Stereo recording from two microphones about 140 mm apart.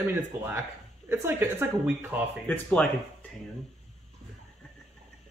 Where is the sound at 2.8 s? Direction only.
10° left (ahead or behind).